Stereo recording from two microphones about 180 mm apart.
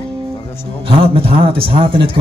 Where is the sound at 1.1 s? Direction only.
30° right (ahead or behind).